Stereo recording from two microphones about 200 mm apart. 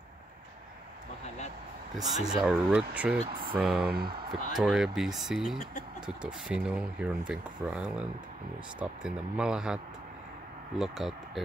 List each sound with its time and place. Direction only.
2.1 s speech: 5° right (ahead or behind)
3.9 s speech: 50° right (ahead or behind)
4.6 s speech: centre (ahead or behind)
10.8 s speech: centre (ahead or behind)